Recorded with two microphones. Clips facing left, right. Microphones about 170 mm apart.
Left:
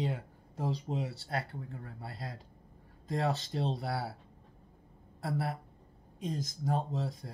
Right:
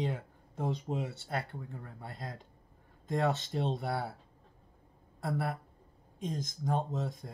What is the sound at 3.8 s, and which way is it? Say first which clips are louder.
Speech: right 1 dB; 20° right (ahead or behind).